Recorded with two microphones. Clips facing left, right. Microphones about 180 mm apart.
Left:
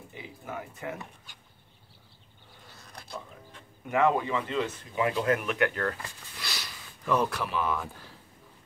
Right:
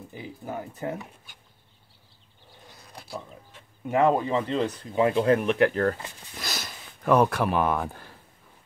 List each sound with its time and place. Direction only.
0.1 s speech: 35° right (ahead or behind)
2.8 s a sound: 10° right (ahead or behind)
3.9 s speech: 35° right (ahead or behind); by 8.1 s 50° right (ahead or behind)